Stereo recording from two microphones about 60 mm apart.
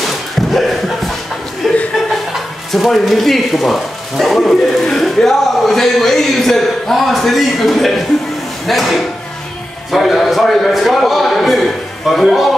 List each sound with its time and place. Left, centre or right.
0.0 s a sound: centre
1.6 s chuckle: centre
2.7 s speech: centre